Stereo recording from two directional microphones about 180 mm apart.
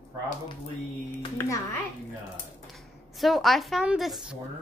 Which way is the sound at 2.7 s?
Centre (ahead or behind).